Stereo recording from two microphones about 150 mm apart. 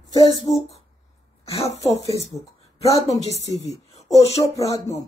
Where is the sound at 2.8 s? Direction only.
45° left (ahead or behind).